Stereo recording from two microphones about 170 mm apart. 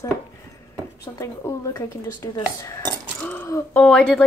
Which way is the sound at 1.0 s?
15° left (ahead or behind).